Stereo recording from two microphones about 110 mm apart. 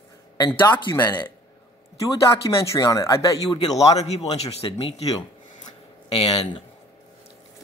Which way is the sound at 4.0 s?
75° left (ahead or behind).